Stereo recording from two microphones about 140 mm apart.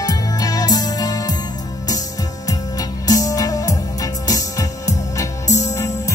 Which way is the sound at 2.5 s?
25° left (ahead or behind).